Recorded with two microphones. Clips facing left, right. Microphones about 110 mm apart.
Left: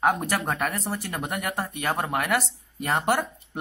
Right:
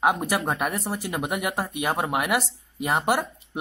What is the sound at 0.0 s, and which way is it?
Speech, 10° right (ahead or behind).